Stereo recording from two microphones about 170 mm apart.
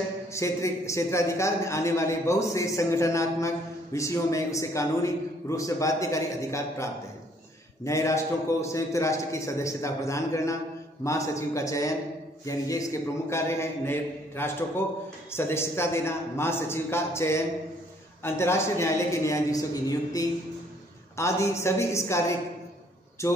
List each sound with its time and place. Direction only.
0.3 s a man's voice: 15° left (ahead or behind)